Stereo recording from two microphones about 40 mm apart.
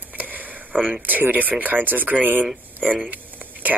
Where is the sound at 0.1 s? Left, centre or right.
Right.